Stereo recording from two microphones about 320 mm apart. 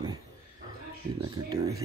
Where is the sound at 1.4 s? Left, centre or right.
Centre.